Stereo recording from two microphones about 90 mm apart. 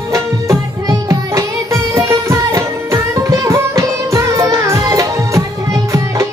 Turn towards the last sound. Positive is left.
turn(degrees=-35)  # may be behind; listen again after turning